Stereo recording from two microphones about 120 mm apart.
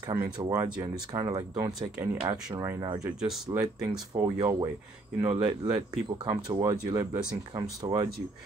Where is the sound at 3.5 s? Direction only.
25° right (ahead or behind).